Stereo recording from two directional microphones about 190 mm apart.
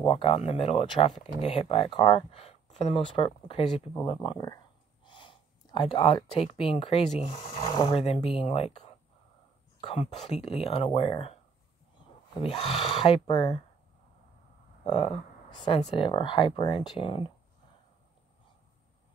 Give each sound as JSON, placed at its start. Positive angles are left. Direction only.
{"t": 0.0, "sound": "speech", "side_deg": 30}
{"t": 12.4, "sound": "speech", "side_deg": 30}
{"t": 14.9, "sound": "speech", "side_deg": 30}